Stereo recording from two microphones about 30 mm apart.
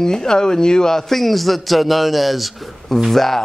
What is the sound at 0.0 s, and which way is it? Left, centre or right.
A man's voice, centre.